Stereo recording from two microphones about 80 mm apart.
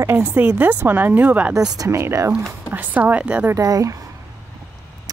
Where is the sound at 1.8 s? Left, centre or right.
Right.